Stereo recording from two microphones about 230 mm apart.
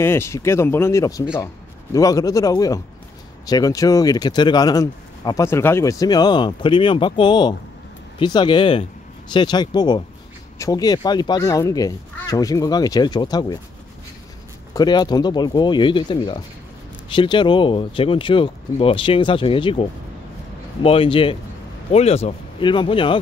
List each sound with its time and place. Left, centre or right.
0.0 s speech: centre
14.7 s speech: centre